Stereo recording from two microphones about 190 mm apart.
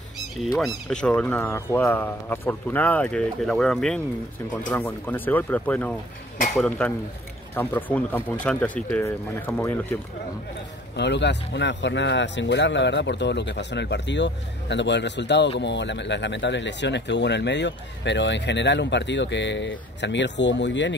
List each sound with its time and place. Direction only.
0.8 s speech: 5° left (ahead or behind)
11.0 s speech: 65° left (ahead or behind)